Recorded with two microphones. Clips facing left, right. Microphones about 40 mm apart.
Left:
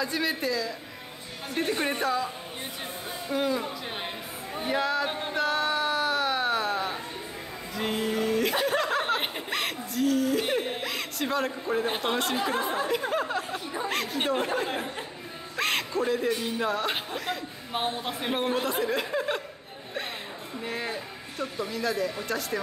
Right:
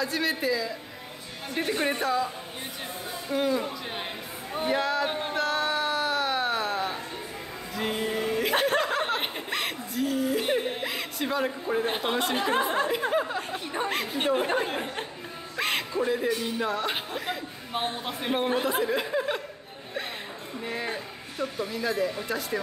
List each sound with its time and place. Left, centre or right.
0.0 s speech: centre
4.6 s a sound: centre
7.7 s music: centre
8.7 s chuckle: centre
10.4 s speech: centre
12.4 s speech: right
13.1 s speech: centre
15.5 s music: centre
16.3 s speech: centre
20.6 s speech: centre